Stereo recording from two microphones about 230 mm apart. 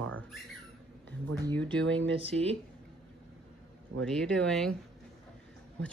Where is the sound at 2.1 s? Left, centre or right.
Right.